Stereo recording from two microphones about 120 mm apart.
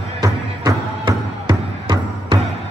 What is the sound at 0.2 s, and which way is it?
Music, 35° right (ahead or behind).